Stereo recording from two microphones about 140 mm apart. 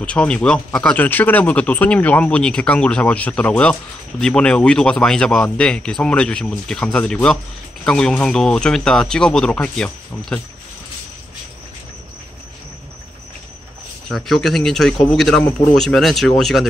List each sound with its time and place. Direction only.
0.0 s speech: 10° left (ahead or behind)
14.0 s speech: centre (ahead or behind)